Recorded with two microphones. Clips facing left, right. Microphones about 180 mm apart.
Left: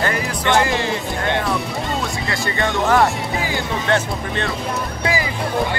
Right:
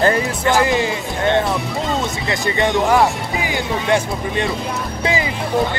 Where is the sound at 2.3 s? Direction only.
20° right (ahead or behind).